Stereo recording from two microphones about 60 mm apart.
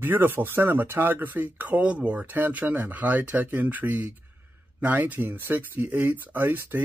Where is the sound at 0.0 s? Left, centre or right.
Right.